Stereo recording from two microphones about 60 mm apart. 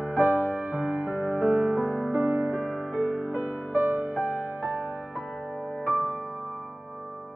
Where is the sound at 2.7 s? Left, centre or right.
Centre.